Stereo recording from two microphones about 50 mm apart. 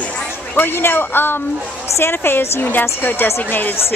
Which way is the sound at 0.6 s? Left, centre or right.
Left.